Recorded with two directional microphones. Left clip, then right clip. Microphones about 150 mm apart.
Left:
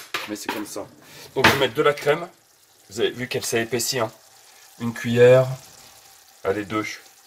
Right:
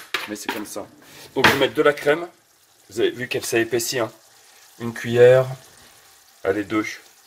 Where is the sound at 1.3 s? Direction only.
20° right (ahead or behind).